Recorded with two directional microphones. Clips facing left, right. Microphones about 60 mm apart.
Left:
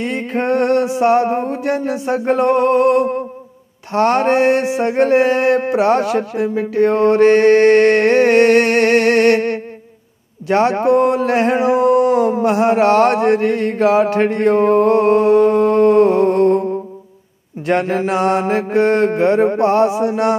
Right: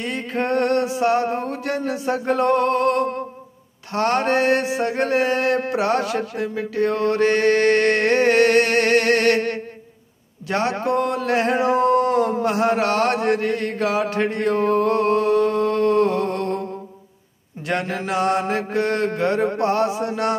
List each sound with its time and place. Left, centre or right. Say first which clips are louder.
0.0 s mantra: left 5 dB; left
10.5 s a sound: left 8 dB; left
17.6 s mantra: left 7 dB; left